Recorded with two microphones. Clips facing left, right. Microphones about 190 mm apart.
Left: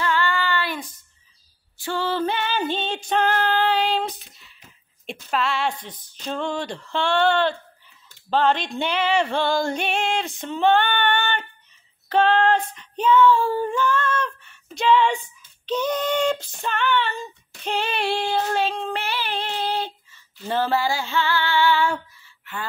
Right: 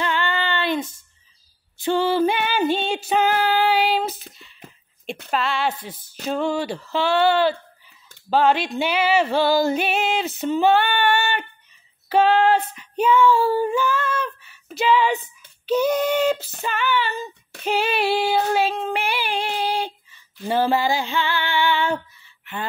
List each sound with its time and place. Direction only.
0.0 s female singing: 20° right (ahead or behind)